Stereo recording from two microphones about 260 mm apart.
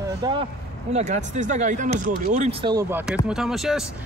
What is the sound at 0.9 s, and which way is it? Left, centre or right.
Speech, right.